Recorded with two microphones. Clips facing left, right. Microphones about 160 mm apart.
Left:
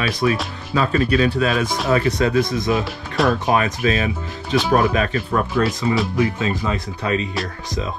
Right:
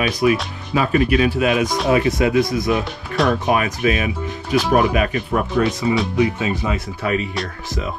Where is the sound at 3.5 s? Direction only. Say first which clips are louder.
Even; 30° left (ahead or behind).